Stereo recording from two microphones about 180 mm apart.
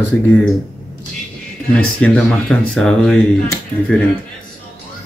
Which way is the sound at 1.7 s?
5° left (ahead or behind).